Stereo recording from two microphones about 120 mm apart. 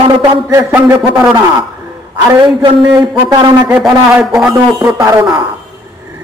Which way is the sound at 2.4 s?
45° right (ahead or behind).